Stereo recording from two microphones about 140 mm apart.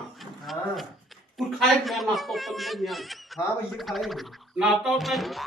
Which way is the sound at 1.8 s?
Centre (ahead or behind).